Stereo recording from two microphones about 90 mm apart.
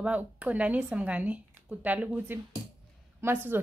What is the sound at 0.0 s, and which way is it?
A woman's voice, 15° right (ahead or behind).